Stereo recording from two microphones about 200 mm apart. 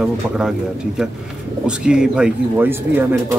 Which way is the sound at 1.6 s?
5° right (ahead or behind).